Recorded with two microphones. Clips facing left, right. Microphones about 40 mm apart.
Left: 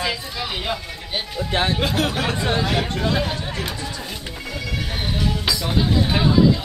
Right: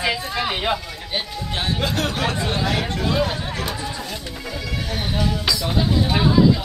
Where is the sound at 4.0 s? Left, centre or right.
Centre.